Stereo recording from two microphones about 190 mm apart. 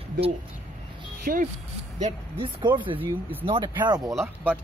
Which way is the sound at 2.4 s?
25° right (ahead or behind).